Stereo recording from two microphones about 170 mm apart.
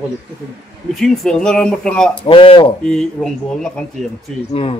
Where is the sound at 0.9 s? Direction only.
Centre (ahead or behind).